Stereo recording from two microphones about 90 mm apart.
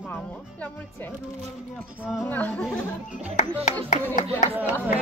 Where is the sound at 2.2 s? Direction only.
20° left (ahead or behind).